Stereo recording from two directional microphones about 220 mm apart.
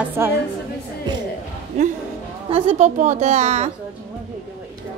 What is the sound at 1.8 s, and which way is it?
A woman's voice, 30° right (ahead or behind).